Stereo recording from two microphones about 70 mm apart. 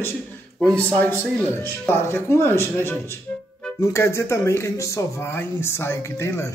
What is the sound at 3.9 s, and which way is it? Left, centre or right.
A man's voice, left.